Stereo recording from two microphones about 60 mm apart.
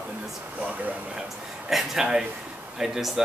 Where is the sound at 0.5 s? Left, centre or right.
Right.